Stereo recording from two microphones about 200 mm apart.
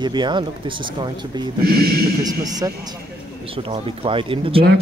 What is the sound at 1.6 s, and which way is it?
Speech, 50° right (ahead or behind).